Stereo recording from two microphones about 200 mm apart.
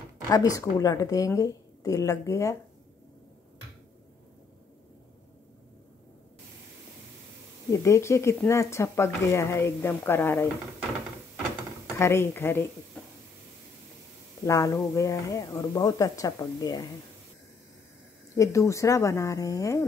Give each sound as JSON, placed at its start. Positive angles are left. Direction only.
{"t": 0.3, "sound": "speech", "side_deg": 15}
{"t": 7.7, "sound": "speech", "side_deg": 15}
{"t": 12.0, "sound": "speech", "side_deg": 10}
{"t": 14.4, "sound": "speech", "side_deg": 15}
{"t": 18.3, "sound": "speech", "side_deg": 15}